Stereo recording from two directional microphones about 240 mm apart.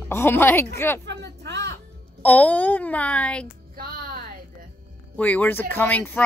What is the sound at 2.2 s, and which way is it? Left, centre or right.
Speech, centre.